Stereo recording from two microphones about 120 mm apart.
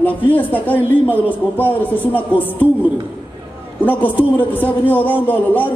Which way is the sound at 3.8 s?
15° left (ahead or behind).